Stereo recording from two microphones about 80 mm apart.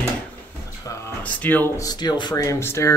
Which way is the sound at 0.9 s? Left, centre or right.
Left.